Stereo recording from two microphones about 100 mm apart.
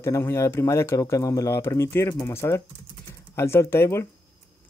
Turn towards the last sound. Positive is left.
turn(degrees=25)  # may be behind; listen again after turning